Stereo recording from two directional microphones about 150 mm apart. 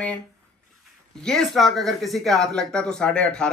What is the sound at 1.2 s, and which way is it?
A man's voice, 5° left (ahead or behind).